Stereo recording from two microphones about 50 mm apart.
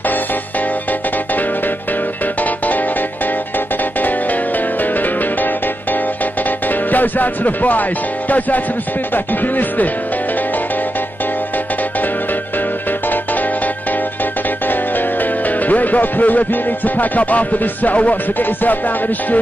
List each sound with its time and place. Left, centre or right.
4.9 s music: left
6.7 s music: left
14.7 s speech: left
18.4 s music: left